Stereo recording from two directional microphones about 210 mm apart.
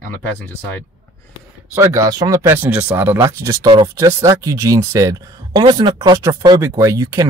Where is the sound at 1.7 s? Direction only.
15° right (ahead or behind).